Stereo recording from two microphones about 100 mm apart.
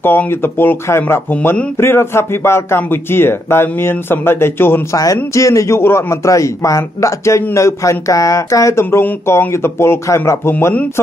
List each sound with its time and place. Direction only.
0.0 s speech: 20° left (ahead or behind)
4.9 s a man's voice: 35° left (ahead or behind); by 10.9 s 15° left (ahead or behind)